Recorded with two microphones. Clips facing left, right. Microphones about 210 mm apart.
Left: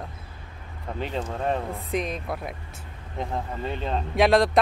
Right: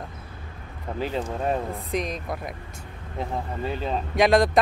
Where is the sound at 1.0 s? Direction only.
5° right (ahead or behind).